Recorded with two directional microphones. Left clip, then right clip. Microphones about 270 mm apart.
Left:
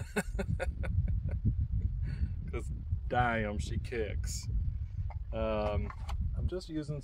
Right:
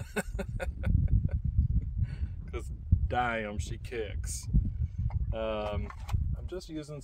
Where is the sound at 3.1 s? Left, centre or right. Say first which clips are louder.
Even; centre.